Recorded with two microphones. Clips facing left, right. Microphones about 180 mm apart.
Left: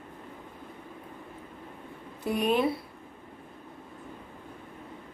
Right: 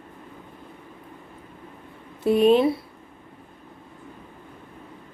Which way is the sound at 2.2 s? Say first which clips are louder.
Right 9 dB; 25° right (ahead or behind).